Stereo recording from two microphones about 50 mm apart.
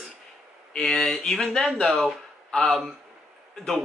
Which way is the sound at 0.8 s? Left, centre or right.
Centre.